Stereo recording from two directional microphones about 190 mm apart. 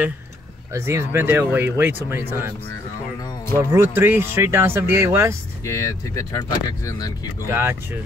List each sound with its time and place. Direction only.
0.7 s speech: 15° right (ahead or behind)
3.5 s speech: 15° right (ahead or behind)
5.7 s speech: 15° left (ahead or behind)
7.4 s speech: 15° right (ahead or behind)